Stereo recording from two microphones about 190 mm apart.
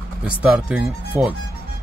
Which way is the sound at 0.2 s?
5° right (ahead or behind).